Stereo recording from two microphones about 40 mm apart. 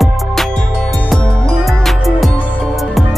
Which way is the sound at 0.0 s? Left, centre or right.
Centre.